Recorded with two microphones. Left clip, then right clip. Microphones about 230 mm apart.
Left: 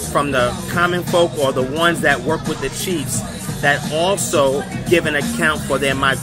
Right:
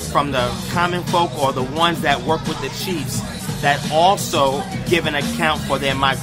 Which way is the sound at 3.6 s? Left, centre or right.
Centre.